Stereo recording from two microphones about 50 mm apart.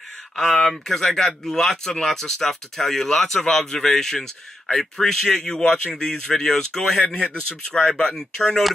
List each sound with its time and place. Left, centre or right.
0.4 s speech: centre
8.1 s speech: centre